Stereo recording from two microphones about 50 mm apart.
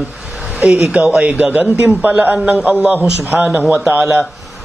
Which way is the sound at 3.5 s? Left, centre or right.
Right.